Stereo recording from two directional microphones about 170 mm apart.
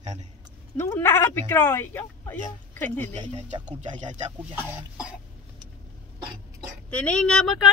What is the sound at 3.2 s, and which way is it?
Speech, 40° right (ahead or behind).